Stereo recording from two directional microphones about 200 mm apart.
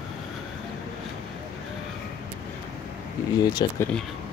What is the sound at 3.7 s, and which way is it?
Speech, 10° left (ahead or behind).